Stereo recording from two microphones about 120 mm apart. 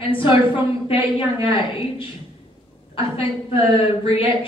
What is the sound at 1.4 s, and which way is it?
Speech, 50° left (ahead or behind).